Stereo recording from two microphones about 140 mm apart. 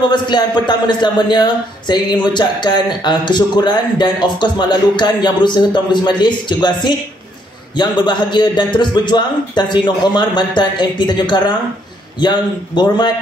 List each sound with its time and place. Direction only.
0.1 s a man's voice: 30° left (ahead or behind)